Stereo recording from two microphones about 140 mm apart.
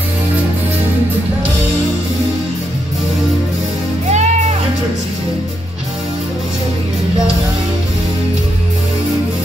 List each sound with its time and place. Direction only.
4.1 s music: 55° right (ahead or behind)